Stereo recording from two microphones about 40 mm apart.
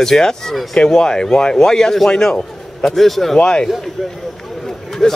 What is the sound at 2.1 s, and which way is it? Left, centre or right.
Speech, left.